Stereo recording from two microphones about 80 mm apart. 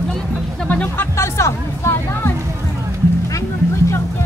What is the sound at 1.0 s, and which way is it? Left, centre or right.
Music, left.